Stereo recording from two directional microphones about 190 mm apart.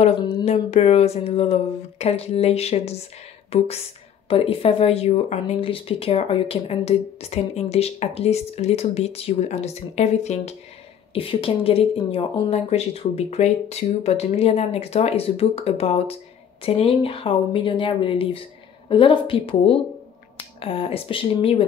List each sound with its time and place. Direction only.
0.5 s speech: 35° left (ahead or behind)